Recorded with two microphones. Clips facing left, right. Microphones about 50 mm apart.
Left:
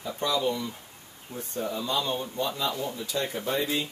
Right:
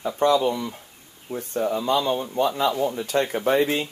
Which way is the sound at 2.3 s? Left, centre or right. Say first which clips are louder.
Right 8 dB; right.